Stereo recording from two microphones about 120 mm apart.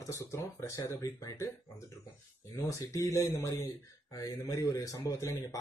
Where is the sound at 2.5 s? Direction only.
25° left (ahead or behind).